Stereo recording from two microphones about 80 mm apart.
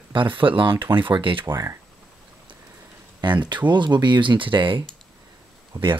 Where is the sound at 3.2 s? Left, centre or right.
Right.